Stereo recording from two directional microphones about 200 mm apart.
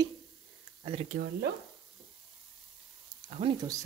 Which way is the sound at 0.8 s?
30° right (ahead or behind).